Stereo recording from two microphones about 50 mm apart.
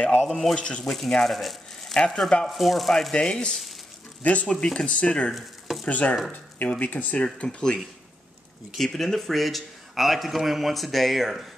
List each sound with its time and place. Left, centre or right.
0.2 s a man's voice: centre
0.6 s speech: left
0.8 s a man's voice: centre
4.2 s speech: left
5.3 s a sound: centre
5.9 s speech: left
7.3 s speech: centre
8.7 s a man's voice: centre